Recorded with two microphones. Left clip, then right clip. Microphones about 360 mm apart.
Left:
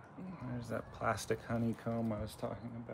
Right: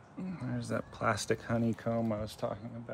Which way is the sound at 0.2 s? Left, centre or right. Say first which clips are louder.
Right 6 dB; right.